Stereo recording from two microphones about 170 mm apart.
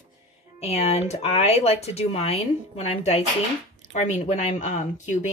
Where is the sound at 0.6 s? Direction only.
40° left (ahead or behind).